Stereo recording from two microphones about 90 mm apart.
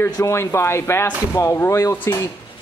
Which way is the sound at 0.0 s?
30° left (ahead or behind).